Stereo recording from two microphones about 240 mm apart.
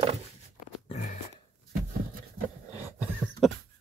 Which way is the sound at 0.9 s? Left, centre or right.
Left.